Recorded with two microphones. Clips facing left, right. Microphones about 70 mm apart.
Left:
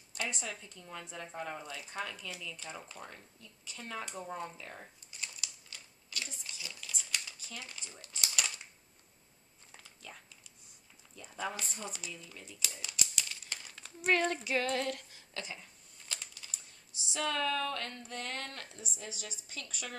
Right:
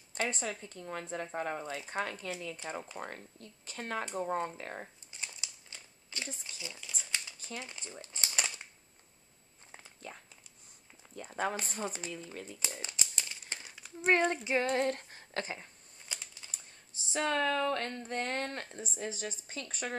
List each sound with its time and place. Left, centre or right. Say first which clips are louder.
0.1 s a woman's voice: right 4 dB; right
1.6 s a woman's voice: right 5 dB; right
1.9 s speech: right 4 dB; right
5.2 s crumpling: even; right
7.3 s a sound: right 4 dB; right
9.7 s a sound: right 4 dB; right
11.1 s a woman's voice: right 5 dB; right
12.4 s crumpling: right 3 dB; right
14.0 s female singing: right 2 dB; right
16.1 s typing: even; right
16.4 s a sound: right 1 dB; right